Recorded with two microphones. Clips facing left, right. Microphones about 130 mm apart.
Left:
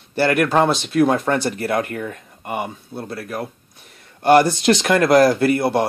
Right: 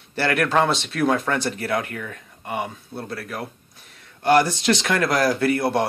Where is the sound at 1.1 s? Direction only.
40° left (ahead or behind).